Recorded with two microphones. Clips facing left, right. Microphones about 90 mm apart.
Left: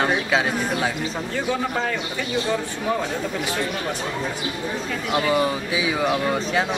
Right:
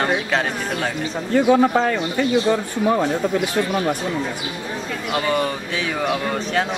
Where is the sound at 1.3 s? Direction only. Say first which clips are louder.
Right 11 dB; 50° right (ahead or behind).